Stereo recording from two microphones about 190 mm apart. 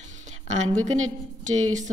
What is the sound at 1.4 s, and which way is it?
Speech, 40° right (ahead or behind).